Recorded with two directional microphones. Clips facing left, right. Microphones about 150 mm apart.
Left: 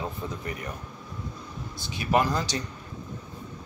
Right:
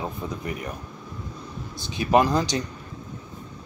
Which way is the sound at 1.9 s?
20° right (ahead or behind).